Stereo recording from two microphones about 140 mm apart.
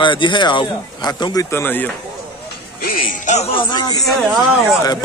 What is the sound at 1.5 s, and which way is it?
Speech, 15° left (ahead or behind).